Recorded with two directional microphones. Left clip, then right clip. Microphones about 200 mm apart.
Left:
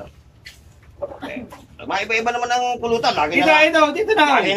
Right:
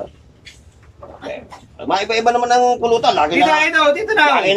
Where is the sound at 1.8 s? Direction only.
20° right (ahead or behind).